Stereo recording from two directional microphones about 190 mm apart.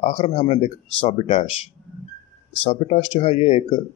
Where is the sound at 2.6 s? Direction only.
30° left (ahead or behind).